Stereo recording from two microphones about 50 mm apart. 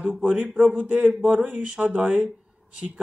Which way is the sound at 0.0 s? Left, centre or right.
Right.